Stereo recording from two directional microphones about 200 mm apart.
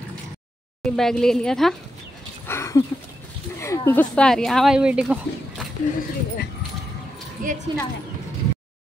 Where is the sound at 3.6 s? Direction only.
15° left (ahead or behind); by 5.2 s 5° right (ahead or behind).